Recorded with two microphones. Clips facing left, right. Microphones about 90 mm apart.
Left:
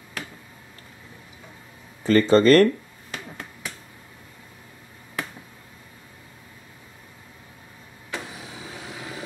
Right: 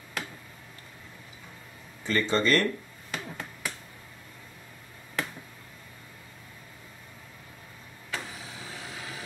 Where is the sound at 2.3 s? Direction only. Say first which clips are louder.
Left 10 dB; 50° left (ahead or behind).